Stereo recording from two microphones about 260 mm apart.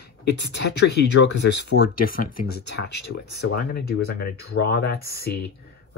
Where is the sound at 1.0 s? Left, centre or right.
Left.